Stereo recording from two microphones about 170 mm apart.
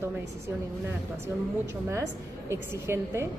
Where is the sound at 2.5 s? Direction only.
15° right (ahead or behind).